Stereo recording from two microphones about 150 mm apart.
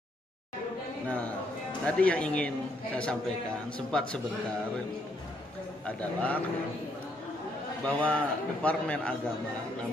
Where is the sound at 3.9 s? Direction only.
5° left (ahead or behind).